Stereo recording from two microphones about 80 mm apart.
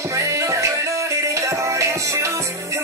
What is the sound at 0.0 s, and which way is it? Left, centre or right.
Music, right.